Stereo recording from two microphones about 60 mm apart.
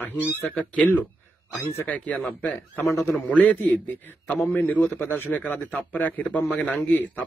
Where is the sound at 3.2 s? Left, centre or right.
Left.